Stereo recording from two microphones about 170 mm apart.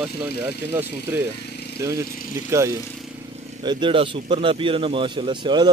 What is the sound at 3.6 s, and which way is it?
A man's voice, 30° right (ahead or behind).